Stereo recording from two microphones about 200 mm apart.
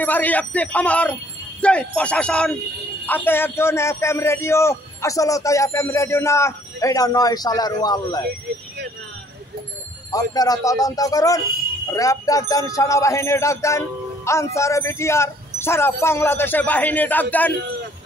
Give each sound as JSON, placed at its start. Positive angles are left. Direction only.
{"t": 0.0, "sound": "speech", "side_deg": 10}
{"t": 10.1, "sound": "speech", "side_deg": 20}